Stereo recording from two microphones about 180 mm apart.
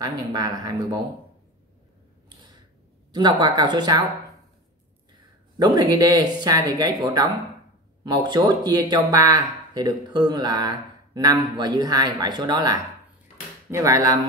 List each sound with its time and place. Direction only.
0.0 s speech: 20° right (ahead or behind)
3.1 s speech: 25° right (ahead or behind)
5.6 s speech: 20° right (ahead or behind)